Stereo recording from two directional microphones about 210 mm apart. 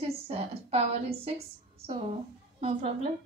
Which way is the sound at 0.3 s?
30° right (ahead or behind).